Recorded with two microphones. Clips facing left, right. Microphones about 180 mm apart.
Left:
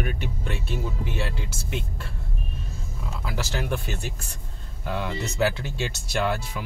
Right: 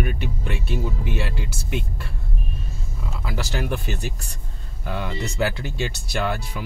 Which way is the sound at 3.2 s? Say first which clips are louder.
Right 2 dB; centre (ahead or behind).